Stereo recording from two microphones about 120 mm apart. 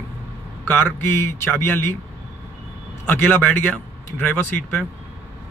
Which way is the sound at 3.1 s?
15° left (ahead or behind).